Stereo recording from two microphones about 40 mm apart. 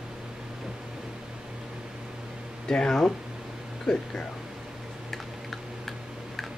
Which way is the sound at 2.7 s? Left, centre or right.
Centre.